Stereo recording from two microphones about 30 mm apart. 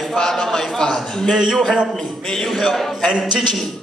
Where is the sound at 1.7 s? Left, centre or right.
Right.